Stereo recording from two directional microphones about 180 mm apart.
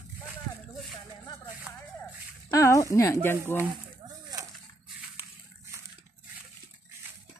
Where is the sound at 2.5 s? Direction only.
15° left (ahead or behind).